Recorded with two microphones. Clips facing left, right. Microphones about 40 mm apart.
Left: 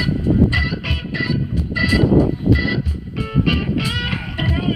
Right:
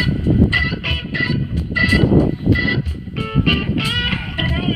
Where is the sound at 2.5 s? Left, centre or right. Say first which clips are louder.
Right 1 dB; right.